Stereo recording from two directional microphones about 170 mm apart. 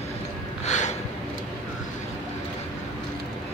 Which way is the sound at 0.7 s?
45° left (ahead or behind).